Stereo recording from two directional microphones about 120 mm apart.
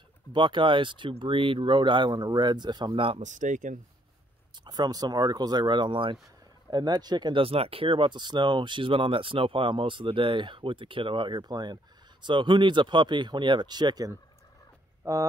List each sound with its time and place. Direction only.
0.3 s speech: 40° right (ahead or behind)
3.2 s speech: 90° right
4.6 s speech: 35° right (ahead or behind)